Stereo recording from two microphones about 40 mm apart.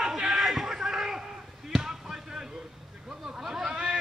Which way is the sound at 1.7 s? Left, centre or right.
Centre.